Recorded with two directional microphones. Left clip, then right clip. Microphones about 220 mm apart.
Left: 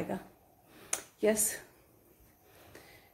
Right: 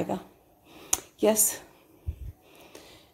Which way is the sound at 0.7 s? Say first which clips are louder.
Right 8 dB; 25° right (ahead or behind).